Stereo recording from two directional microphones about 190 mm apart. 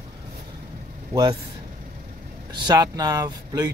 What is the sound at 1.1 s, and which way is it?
Speech, 20° right (ahead or behind).